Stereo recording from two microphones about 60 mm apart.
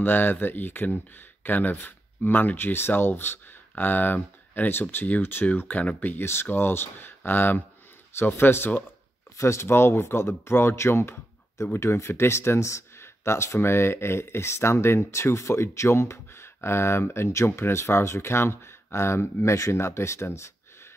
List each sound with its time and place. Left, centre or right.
0.0 s speech: left
9.4 s speech: left